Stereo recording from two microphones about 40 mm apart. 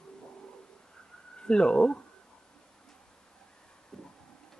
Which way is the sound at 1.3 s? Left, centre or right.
Left.